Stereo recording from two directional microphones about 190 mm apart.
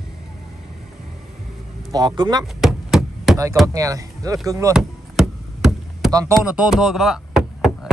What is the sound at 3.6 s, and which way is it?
Speech, 20° right (ahead or behind).